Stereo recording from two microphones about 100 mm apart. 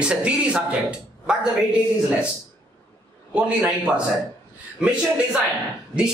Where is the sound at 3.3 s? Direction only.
10° right (ahead or behind).